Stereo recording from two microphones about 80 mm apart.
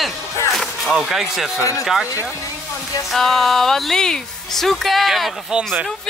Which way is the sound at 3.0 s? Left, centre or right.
Centre.